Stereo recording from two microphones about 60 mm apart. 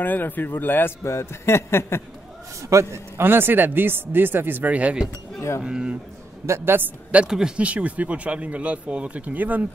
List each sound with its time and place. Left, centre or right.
0.0 s a man's voice: left
1.0 s a man's voice: left
2.7 s a man's voice: right
3.3 s a man's voice: right; by 5.9 s centre
6.4 s a man's voice: right
7.2 s a man's voice: centre
7.6 s speech: right